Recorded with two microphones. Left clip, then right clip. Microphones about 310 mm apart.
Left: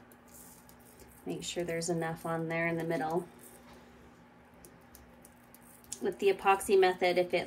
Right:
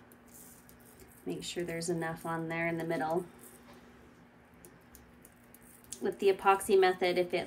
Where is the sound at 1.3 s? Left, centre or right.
Centre.